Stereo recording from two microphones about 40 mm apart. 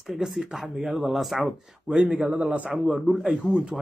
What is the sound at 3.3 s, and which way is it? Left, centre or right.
Speech, right.